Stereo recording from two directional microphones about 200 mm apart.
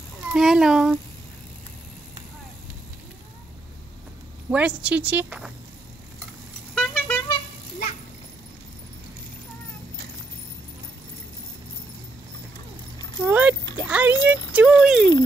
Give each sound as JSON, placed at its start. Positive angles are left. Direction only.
{"t": 0.3, "sound": "speech", "side_deg": 0}
{"t": 4.5, "sound": "a woman's voice", "side_deg": -5}
{"t": 6.7, "sound": "vehicle", "side_deg": 5}
{"t": 13.2, "sound": "a sound", "side_deg": -5}